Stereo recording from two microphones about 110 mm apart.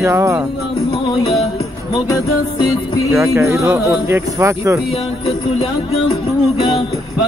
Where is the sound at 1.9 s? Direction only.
40° left (ahead or behind).